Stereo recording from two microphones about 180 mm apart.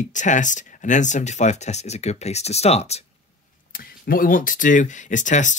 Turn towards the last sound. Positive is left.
turn(degrees=45)  # may be behind; listen again after turning